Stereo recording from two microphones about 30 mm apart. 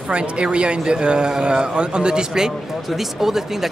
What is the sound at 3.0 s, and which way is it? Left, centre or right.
Speech, centre.